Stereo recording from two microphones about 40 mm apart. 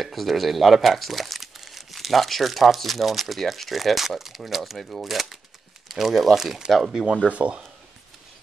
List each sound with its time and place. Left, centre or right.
0.0 s speech: centre
7.2 s speech: right